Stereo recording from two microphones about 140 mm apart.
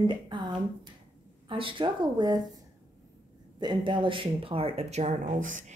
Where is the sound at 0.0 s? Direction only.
35° right (ahead or behind).